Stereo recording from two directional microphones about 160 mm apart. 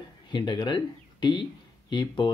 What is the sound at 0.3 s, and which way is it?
Speech, 30° left (ahead or behind).